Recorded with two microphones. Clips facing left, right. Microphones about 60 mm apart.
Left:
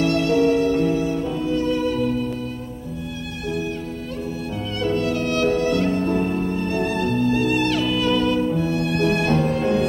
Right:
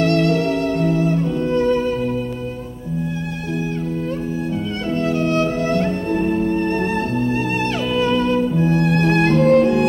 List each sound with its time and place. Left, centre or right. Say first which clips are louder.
0.0 s music: right 1 dB; right
5.0 s music: right 6 dB; right
7.2 s music: left 1 dB; right
9.4 s music: right 9 dB; right